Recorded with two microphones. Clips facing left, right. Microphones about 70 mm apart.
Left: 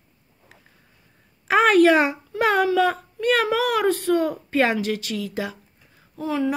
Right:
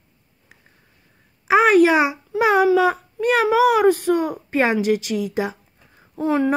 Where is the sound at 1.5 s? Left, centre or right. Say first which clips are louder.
Right 2 dB; centre.